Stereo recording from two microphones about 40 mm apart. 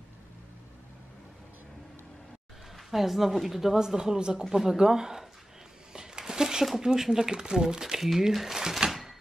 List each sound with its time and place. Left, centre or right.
2.9 s speech: centre
5.9 s a sound: centre
6.8 s speech: centre